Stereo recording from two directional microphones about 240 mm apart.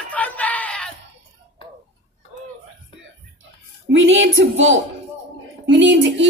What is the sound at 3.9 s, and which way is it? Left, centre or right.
A woman's voice, right.